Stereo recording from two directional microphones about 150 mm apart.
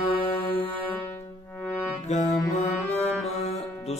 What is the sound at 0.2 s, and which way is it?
Music, 35° left (ahead or behind).